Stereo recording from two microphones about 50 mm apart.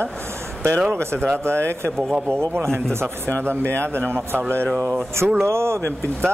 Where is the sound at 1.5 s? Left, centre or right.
Right.